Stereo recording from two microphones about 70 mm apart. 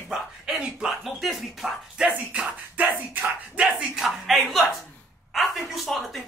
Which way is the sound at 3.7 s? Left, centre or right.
Centre.